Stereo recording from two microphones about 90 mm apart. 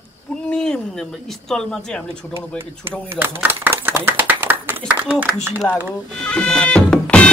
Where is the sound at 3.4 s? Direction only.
20° right (ahead or behind).